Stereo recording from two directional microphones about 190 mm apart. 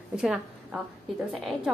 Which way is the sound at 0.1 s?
5° right (ahead or behind).